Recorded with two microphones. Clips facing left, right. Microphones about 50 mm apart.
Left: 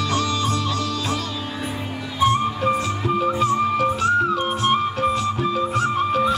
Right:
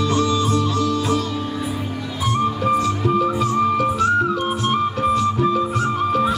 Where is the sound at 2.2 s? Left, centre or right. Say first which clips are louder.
Left 2 dB; left.